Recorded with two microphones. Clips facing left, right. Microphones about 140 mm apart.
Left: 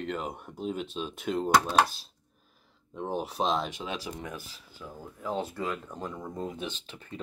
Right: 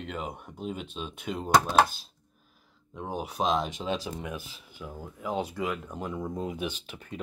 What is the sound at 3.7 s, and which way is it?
Speech, 20° right (ahead or behind).